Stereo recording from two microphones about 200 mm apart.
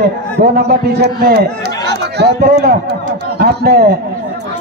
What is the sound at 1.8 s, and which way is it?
Run, 55° right (ahead or behind).